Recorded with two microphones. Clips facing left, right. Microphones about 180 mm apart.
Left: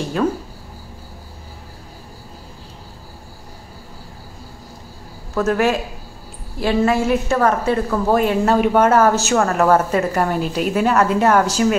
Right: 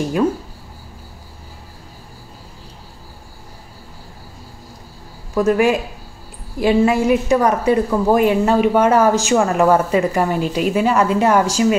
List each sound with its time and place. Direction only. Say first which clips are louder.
5.3 s a man's voice: right 3 dB; 10° right (ahead or behind)